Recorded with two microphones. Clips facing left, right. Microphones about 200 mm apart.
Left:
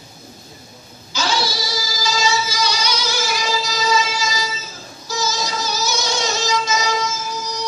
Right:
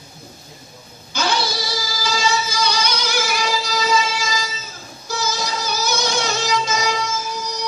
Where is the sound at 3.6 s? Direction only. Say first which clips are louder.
Even; 55° right (ahead or behind).